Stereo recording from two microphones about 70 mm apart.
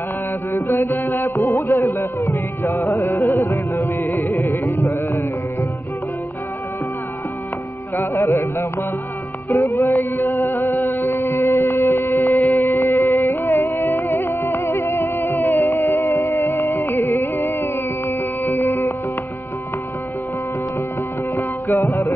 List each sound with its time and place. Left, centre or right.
0.5 s music: left
3.2 s music: left
4.0 s carnatic music: left
7.9 s music: left